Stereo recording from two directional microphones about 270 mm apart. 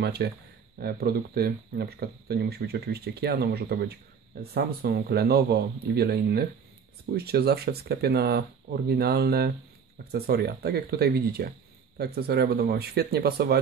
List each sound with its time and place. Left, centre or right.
0.0 s speech: right